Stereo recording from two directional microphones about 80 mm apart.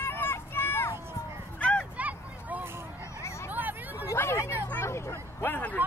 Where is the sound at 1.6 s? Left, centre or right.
Centre.